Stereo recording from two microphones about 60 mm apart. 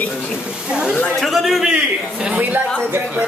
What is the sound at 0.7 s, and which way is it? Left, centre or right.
Speech, centre.